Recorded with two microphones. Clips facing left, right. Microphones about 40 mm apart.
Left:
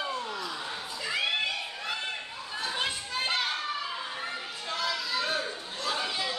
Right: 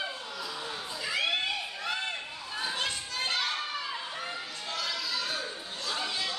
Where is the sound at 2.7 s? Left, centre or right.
Centre.